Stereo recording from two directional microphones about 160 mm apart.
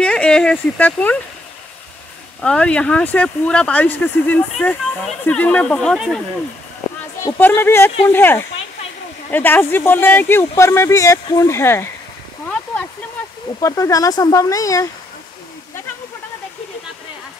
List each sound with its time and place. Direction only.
0.0 s speech: 5° left (ahead or behind)
2.4 s speech: 5° left (ahead or behind)
7.3 s speech: 15° left (ahead or behind)
13.6 s speech: 20° left (ahead or behind)